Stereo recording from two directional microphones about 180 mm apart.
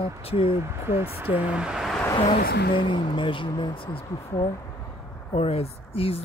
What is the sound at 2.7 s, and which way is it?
Speech, 30° left (ahead or behind).